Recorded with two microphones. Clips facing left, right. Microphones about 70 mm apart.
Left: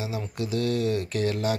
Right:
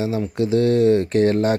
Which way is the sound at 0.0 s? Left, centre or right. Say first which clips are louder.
Right 10 dB; right.